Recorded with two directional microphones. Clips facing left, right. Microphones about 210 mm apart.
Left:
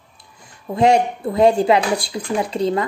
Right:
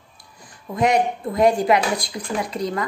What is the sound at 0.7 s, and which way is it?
Speech, 30° left (ahead or behind).